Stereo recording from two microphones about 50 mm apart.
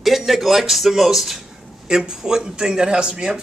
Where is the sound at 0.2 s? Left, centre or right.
Centre.